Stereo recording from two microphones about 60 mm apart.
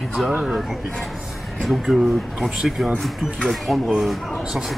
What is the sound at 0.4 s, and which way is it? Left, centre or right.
Speech, centre.